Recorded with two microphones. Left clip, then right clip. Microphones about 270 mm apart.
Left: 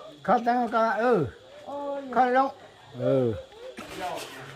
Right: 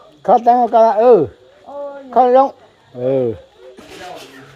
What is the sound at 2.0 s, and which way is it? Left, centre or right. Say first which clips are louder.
Speech: right 12 dB; centre.